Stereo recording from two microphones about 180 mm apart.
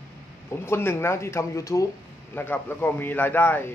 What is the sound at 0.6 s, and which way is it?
A man's voice, 15° left (ahead or behind).